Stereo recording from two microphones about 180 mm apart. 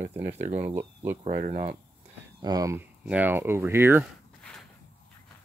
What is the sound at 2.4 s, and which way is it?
Speech, 20° right (ahead or behind).